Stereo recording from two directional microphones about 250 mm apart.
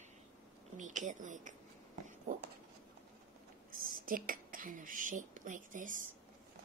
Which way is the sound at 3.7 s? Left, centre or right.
Right.